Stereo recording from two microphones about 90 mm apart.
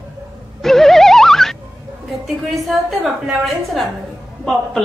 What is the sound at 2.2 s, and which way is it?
A woman's voice, centre (ahead or behind).